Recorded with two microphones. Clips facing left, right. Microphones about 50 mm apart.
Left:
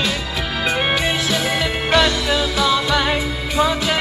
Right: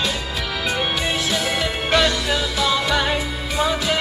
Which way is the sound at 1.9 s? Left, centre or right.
Left.